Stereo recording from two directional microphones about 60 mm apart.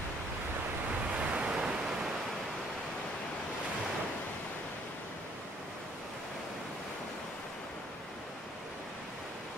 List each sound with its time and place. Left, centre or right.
1.1 s waves: centre